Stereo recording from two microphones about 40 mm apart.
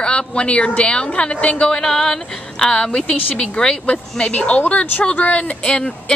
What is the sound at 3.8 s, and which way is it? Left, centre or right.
A woman's voice, left.